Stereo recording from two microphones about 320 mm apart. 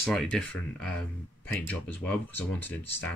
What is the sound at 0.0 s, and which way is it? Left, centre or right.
Speech, centre.